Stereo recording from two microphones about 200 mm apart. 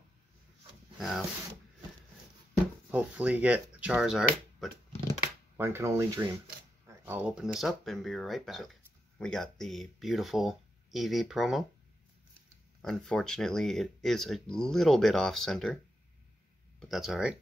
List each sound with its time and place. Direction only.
0.9 s speech: centre (ahead or behind)
2.9 s speech: 5° right (ahead or behind)
5.6 s speech: 10° right (ahead or behind)
12.8 s speech: centre (ahead or behind)
16.8 s speech: centre (ahead or behind)